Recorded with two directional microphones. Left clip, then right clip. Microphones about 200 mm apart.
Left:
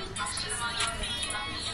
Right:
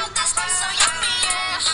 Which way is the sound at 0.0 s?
50° right (ahead or behind).